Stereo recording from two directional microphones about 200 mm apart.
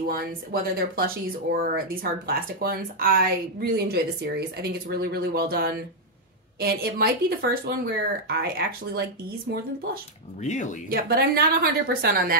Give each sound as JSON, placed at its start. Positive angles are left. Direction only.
{"t": 0.0, "sound": "speech", "side_deg": -50}
{"t": 10.4, "sound": "speech", "side_deg": 35}
{"t": 10.9, "sound": "speech", "side_deg": -50}